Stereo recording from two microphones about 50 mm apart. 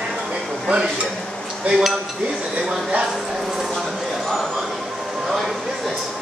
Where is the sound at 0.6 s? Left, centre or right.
Centre.